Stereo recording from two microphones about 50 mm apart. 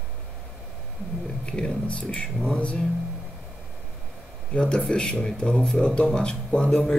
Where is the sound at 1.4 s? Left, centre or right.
Left.